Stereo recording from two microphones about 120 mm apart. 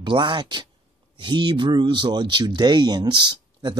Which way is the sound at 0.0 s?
40° right (ahead or behind).